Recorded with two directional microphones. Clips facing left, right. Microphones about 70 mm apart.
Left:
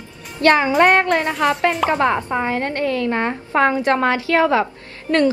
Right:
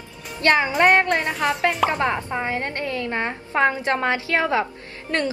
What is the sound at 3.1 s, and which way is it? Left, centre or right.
Speech, left.